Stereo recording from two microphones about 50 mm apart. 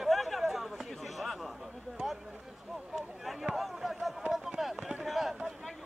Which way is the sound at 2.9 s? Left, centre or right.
Centre.